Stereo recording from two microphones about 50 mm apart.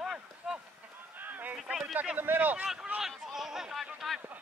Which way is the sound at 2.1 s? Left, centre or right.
Right.